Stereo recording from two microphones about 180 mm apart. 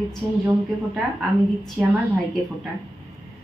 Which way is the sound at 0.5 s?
Centre (ahead or behind).